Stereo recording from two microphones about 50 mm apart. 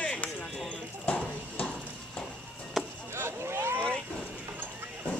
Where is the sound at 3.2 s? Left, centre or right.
Right.